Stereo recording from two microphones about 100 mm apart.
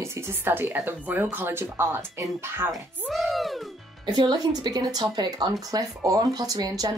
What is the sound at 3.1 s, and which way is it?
Speech, centre (ahead or behind).